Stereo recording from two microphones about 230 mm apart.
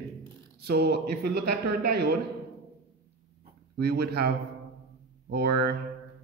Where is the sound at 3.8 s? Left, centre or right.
Right.